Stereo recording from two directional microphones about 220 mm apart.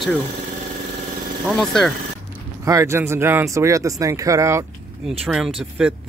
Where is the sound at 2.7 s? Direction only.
15° right (ahead or behind).